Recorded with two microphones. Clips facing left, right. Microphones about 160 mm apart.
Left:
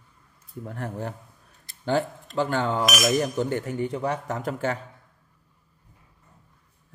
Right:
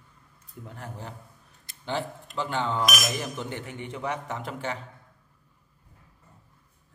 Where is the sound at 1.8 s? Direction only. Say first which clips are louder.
Left 7 dB; 45° left (ahead or behind).